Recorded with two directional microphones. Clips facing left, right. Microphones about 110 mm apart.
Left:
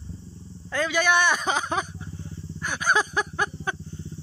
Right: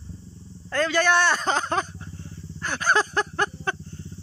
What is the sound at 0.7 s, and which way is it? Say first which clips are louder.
Speech: right 2 dB; 10° left (ahead or behind).